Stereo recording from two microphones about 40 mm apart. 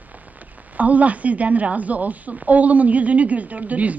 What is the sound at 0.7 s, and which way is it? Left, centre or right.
A woman's voice, right.